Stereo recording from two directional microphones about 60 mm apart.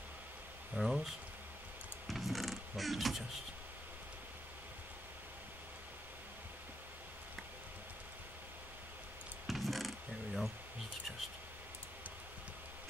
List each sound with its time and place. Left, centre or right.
0.7 s a sound: centre
2.0 s mechanisms: centre
9.5 s wood: centre